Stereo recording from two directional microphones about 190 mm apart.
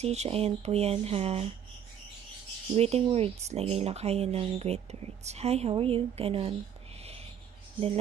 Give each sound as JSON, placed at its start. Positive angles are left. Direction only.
{"t": 0.0, "sound": "speech", "side_deg": -35}
{"t": 2.7, "sound": "speech", "side_deg": -35}